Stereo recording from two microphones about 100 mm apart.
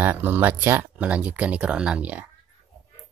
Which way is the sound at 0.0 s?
20° right (ahead or behind).